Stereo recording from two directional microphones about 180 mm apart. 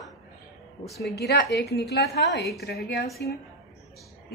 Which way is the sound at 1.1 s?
70° left (ahead or behind).